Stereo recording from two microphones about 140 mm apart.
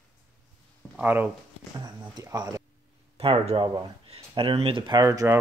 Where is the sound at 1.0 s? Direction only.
15° right (ahead or behind).